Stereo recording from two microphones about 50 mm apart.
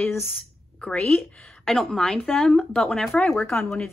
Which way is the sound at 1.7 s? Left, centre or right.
Centre.